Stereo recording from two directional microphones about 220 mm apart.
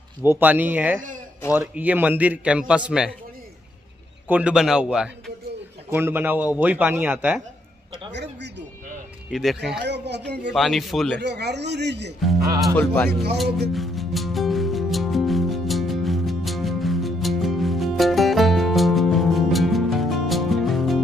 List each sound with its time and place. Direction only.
0.2 s a man's voice: 10° right (ahead or behind)
4.3 s a man's voice: 5° right (ahead or behind)
8.1 s a man's voice: 50° right (ahead or behind)
9.3 s a man's voice: centre (ahead or behind)
9.8 s a man's voice: 50° right (ahead or behind)
10.5 s a man's voice: centre (ahead or behind)
11.1 s a man's voice: 50° right (ahead or behind)
12.5 s a man's voice: 5° left (ahead or behind)
13.7 s music: centre (ahead or behind)